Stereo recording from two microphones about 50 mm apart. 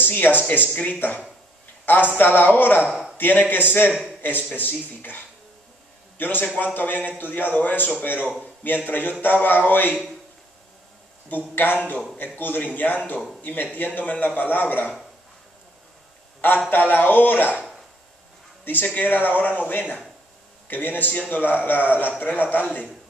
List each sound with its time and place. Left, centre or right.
0.1 s a man's voice: left
2.1 s a man's voice: left
2.9 s a sound: centre
3.2 s a man's voice: left
11.5 s a man's voice: left
16.3 s a sound: left
16.7 s a man's voice: left
18.6 s a man's voice: left